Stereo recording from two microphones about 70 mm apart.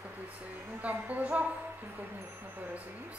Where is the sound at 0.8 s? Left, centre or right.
Right.